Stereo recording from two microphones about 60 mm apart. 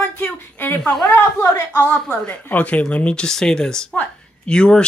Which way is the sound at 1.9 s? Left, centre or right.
Left.